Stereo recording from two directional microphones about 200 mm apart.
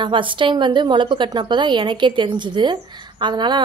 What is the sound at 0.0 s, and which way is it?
A woman's voice, 25° right (ahead or behind).